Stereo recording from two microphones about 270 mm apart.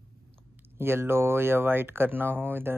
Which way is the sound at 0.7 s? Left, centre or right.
Centre.